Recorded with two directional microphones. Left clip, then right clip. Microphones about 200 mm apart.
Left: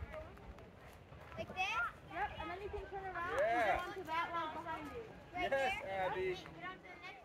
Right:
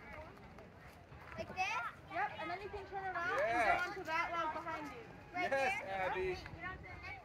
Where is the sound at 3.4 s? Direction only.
50° right (ahead or behind).